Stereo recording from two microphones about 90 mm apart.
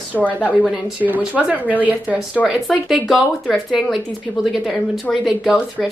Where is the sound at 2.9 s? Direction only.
Centre (ahead or behind).